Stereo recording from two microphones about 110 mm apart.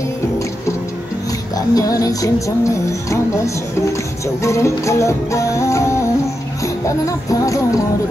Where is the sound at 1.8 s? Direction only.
35° left (ahead or behind).